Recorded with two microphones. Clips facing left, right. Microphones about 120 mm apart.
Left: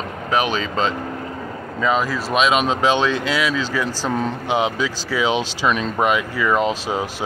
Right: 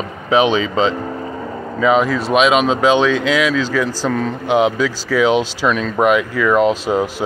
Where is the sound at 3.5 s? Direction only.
15° left (ahead or behind).